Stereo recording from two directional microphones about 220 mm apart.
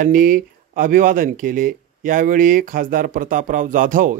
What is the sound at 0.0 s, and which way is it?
Speech, 40° right (ahead or behind).